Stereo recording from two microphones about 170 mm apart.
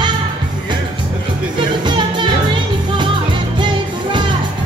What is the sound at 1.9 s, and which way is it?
Music, 25° right (ahead or behind).